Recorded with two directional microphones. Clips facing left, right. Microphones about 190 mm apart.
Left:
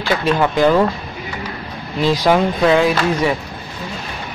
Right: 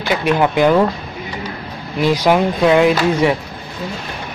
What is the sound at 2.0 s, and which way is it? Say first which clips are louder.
Speech: right 1 dB; 15° right (ahead or behind).